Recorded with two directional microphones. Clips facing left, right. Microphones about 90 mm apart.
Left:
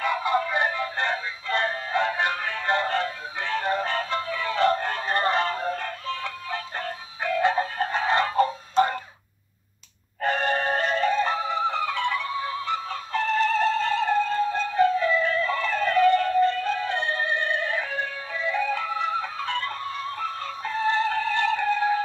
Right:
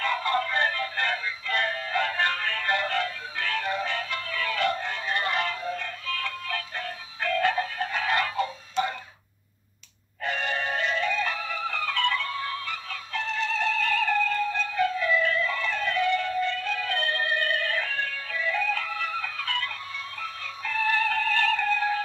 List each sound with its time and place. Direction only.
0.0 s music: 15° left (ahead or behind)
2.7 s music: 30° left (ahead or behind)
4.2 s music: 20° left (ahead or behind)
4.7 s music: 45° left (ahead or behind)
5.6 s music: 45° left (ahead or behind)
6.0 s music: 25° left (ahead or behind)
7.2 s music: 15° left (ahead or behind)
7.5 s music: 30° left (ahead or behind)
8.4 s a sound: 45° left (ahead or behind)
10.2 s music: 40° left (ahead or behind); by 13.0 s 25° left (ahead or behind)
13.1 s music: 45° left (ahead or behind); by 22.0 s 15° left (ahead or behind)